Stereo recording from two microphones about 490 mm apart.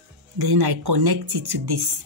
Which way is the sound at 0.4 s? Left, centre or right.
Right.